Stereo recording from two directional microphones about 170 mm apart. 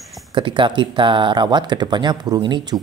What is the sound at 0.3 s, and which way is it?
Speech, 30° right (ahead or behind).